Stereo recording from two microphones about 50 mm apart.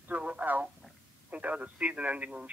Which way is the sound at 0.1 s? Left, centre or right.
Right.